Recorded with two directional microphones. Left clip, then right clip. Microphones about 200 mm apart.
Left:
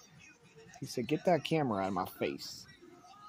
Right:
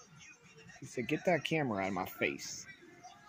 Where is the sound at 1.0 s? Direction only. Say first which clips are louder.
Left 2 dB; 10° left (ahead or behind).